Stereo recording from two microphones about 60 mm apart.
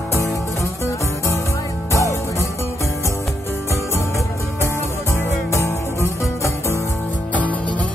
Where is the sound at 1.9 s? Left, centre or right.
Left.